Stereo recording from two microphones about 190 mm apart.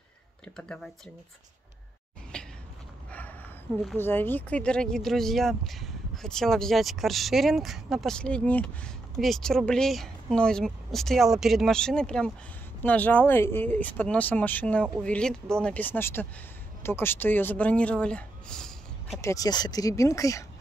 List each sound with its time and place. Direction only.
2.3 s a sound: 5° left (ahead or behind)
3.8 s speech: 10° left (ahead or behind)
19.2 s speech: 20° left (ahead or behind)